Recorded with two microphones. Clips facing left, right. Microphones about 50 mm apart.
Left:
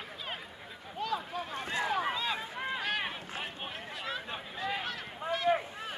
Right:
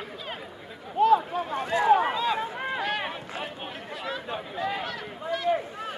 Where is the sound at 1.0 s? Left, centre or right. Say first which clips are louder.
Right 14 dB; right.